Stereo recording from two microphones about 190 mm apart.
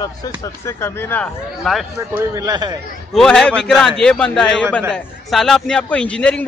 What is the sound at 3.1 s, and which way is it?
Speech, centre (ahead or behind).